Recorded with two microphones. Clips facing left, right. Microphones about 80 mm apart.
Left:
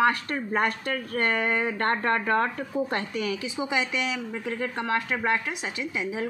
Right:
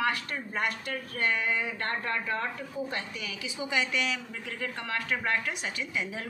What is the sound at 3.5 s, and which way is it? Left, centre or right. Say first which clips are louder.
Speech: right 1 dB; left.